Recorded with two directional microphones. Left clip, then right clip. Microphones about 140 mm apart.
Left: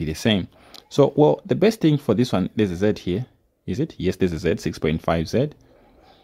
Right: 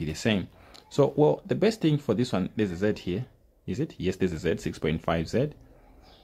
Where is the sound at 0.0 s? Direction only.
40° left (ahead or behind).